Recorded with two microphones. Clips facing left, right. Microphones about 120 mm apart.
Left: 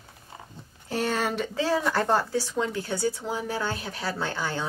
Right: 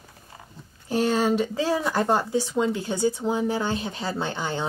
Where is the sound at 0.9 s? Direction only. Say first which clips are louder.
Right 5 dB; 15° right (ahead or behind).